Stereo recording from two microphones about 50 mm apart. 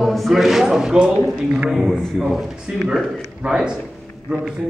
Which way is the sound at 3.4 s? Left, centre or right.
Centre.